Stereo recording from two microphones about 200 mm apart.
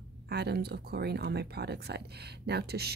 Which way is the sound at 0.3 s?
55° right (ahead or behind).